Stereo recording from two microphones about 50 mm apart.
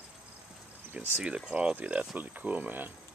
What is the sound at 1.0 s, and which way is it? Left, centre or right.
Speech, right.